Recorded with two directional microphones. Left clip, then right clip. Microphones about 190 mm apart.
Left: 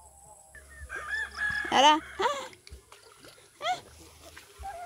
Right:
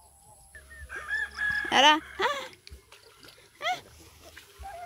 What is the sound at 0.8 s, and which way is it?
Chicken, 35° right (ahead or behind).